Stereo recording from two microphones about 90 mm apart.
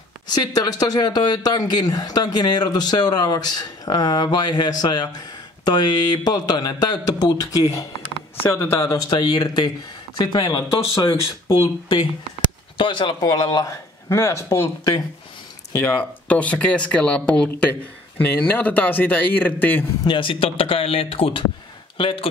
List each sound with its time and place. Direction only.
0.3 s speech: 45° left (ahead or behind)
8.4 s speech: 30° left (ahead or behind)
9.1 s speech: 50° left (ahead or behind)
11.5 s speech: 75° left (ahead or behind)
13.2 s speech: 45° left (ahead or behind); by 14.7 s 30° left (ahead or behind)
15.7 s a man's voice: 20° left (ahead or behind)
20.1 s speech: 75° left (ahead or behind)